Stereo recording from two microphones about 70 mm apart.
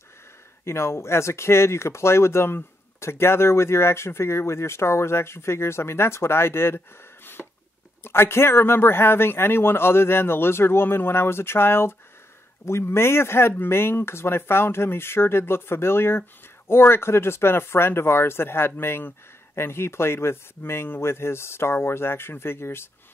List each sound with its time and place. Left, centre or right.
0.7 s speech: left
7.4 s a sound: centre
8.0 s speech: left